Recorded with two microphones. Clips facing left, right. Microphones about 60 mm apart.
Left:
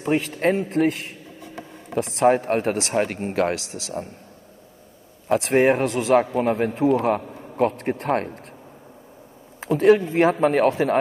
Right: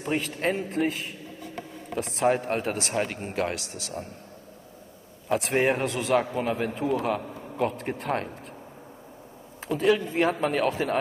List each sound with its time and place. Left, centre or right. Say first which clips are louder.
0.0 s a sound: left 6 dB; left
2.0 s a man's voice: left 6 dB; left
5.3 s a man's voice: left 6 dB; left
9.6 s a man's voice: left 7 dB; left